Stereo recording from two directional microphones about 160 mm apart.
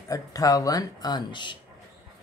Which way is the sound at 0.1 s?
20° left (ahead or behind).